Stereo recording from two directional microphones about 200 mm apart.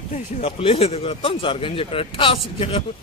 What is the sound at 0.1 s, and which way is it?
Speech, 35° left (ahead or behind).